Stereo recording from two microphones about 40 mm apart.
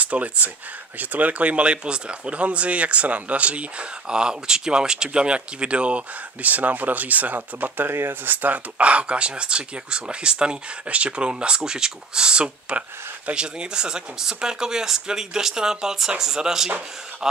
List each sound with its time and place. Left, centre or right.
0.0 s speech: right
4.1 s speech: centre; by 7.9 s right
7.9 s speech: right
8.3 s speech: right; by 17.4 s centre